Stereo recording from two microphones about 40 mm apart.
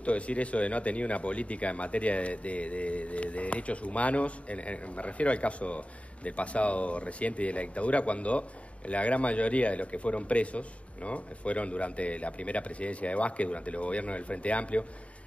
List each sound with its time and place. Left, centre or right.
0.0 s speech: left